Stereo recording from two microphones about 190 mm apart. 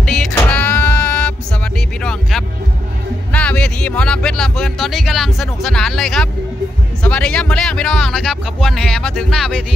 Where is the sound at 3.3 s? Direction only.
5° left (ahead or behind).